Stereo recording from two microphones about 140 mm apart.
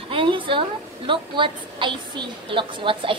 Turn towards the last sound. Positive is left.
turn(degrees=-35)  # may be behind; listen again after turning